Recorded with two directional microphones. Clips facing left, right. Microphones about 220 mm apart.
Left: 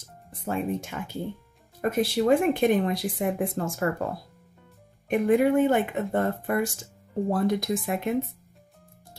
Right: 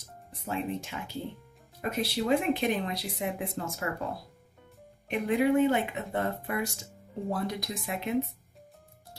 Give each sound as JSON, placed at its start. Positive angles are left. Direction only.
{"t": 0.3, "sound": "speech", "side_deg": 50}
{"t": 5.0, "sound": "speech", "side_deg": 50}